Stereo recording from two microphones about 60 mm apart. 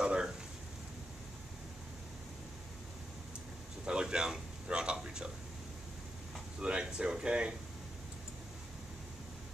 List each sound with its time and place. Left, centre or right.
0.0 s a sound: centre
3.8 s a man's voice: centre
6.6 s speech: centre